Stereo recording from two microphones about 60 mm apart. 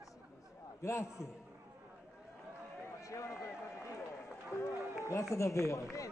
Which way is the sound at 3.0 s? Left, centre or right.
Left.